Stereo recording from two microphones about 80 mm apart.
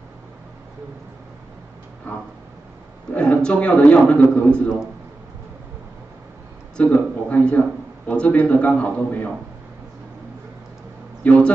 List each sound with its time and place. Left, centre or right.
2.1 s a man's voice: centre
6.8 s a man's voice: centre
11.2 s a man's voice: centre